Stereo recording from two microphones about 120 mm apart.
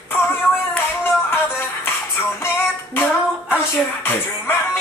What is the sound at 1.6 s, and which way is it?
Music, 20° left (ahead or behind).